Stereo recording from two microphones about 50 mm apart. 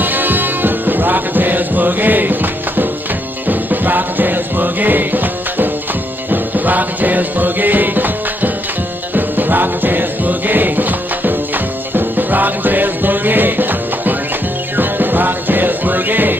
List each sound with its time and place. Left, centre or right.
0.0 s music: right